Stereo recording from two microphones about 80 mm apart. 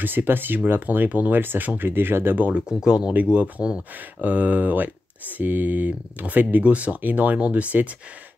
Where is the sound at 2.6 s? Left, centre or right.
Centre.